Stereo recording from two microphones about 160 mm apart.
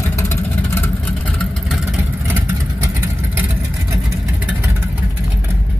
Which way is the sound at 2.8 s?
15° right (ahead or behind).